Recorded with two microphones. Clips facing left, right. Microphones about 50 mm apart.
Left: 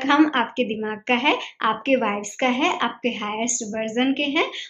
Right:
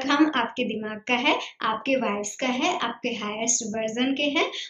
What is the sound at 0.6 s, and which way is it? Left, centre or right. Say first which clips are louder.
Speech: left 4 dB; centre.